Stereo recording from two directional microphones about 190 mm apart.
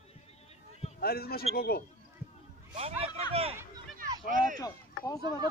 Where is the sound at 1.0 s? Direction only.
55° left (ahead or behind).